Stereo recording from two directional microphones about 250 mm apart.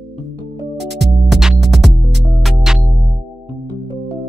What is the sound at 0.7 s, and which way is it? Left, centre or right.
Music, right.